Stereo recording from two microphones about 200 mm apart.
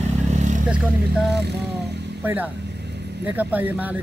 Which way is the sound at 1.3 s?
55° right (ahead or behind).